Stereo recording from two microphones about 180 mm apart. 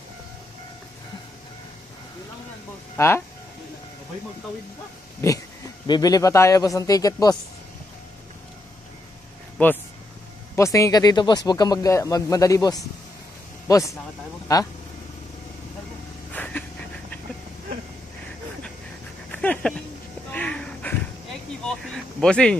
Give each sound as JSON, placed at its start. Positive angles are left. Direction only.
{"t": 3.0, "sound": "speech", "side_deg": 15}
{"t": 5.2, "sound": "speech", "side_deg": 15}
{"t": 9.6, "sound": "speech", "side_deg": 5}
{"t": 16.4, "sound": "a sound", "side_deg": 10}
{"t": 19.3, "sound": "dog", "side_deg": 5}
{"t": 20.2, "sound": "a sound", "side_deg": 5}